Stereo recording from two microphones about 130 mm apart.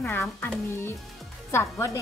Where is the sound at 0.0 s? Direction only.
20° left (ahead or behind).